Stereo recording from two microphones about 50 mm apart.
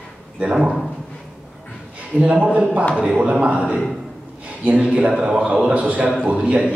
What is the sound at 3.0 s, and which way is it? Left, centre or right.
Speech, right.